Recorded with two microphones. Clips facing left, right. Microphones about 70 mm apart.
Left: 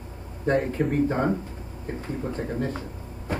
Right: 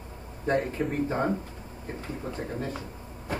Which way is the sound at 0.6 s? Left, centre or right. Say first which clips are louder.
Left 4 dB; left.